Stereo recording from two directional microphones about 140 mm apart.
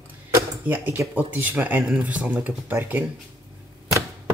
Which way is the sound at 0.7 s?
15° right (ahead or behind).